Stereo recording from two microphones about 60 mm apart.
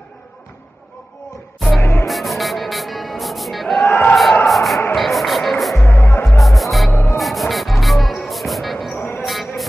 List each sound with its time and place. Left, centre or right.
1.8 s music: left
2.0 s music: centre
3.8 s a sound: left
4.1 s basketball bounce: centre
4.5 s music: centre
5.9 s music: left
6.2 s music: centre
6.9 s music: left
7.2 s music: centre
9.2 s a sound: centre